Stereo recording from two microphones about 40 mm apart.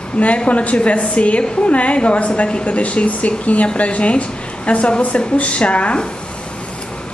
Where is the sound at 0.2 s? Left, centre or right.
Left.